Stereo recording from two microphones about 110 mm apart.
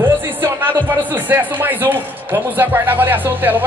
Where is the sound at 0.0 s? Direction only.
20° right (ahead or behind).